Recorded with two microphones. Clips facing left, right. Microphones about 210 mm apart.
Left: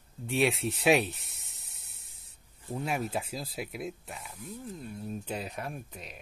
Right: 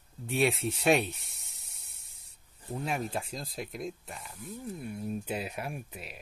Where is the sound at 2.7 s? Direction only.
5° left (ahead or behind).